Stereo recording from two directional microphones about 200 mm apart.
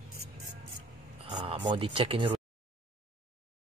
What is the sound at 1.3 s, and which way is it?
Speech, 25° right (ahead or behind).